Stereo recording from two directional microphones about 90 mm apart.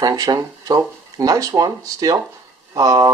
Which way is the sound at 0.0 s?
45° right (ahead or behind).